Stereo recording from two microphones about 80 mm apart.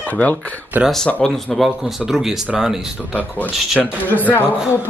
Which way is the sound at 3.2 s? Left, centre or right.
Centre.